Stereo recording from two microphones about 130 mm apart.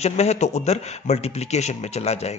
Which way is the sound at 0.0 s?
55° left (ahead or behind).